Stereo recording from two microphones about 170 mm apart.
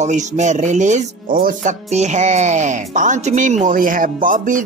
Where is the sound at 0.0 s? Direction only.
45° right (ahead or behind).